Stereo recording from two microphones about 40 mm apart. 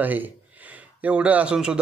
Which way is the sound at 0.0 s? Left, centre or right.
Right.